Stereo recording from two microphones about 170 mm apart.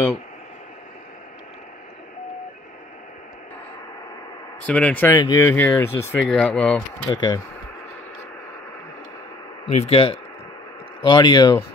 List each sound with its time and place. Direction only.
4.6 s speech: 10° left (ahead or behind)
7.1 s speech: 20° left (ahead or behind)
9.7 s speech: 40° left (ahead or behind)